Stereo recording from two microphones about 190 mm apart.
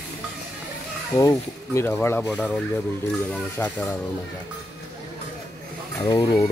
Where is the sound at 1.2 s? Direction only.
15° left (ahead or behind).